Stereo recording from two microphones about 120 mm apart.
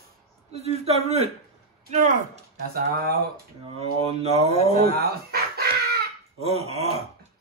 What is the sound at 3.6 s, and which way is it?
Speech, 60° right (ahead or behind).